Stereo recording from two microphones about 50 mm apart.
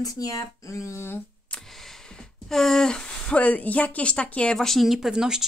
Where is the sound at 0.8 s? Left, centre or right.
Left.